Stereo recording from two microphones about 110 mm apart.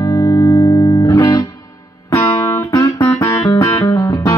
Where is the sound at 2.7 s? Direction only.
30° left (ahead or behind).